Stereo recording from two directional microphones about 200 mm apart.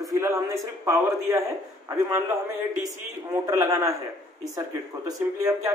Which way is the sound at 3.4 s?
15° right (ahead or behind).